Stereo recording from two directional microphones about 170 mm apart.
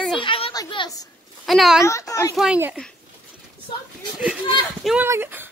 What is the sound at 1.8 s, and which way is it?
Speech, 15° left (ahead or behind).